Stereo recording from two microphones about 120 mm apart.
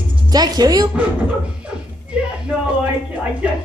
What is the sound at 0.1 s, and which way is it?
Speech, 35° right (ahead or behind).